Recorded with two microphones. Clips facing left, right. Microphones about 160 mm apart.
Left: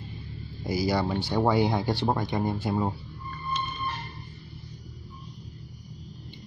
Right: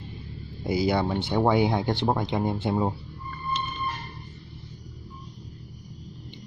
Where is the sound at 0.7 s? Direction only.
20° right (ahead or behind).